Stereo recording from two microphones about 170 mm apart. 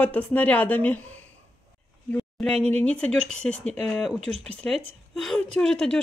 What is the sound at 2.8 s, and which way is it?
Speech, 5° left (ahead or behind).